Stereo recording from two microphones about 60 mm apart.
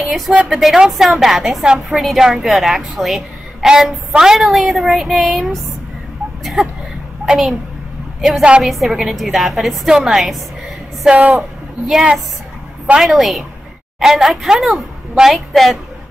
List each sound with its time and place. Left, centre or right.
0.0 s a woman's voice: centre
6.4 s a sound: centre
7.2 s a child's voice: centre
11.1 s a woman's voice: right
11.9 s a child's voice: centre
13.0 s a woman's voice: centre